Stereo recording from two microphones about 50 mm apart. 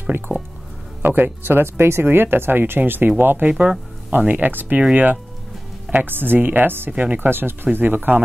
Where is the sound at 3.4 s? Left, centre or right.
Right.